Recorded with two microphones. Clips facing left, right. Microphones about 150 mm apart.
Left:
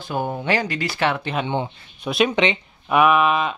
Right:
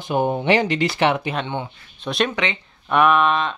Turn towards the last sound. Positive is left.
turn(degrees=5)  # may be behind; listen again after turning